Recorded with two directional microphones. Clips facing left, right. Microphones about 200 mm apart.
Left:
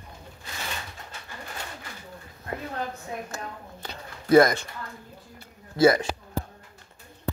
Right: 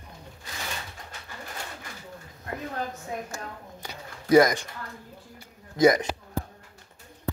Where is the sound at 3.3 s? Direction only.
10° right (ahead or behind).